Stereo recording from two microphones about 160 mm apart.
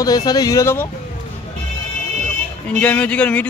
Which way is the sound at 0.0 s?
25° left (ahead or behind).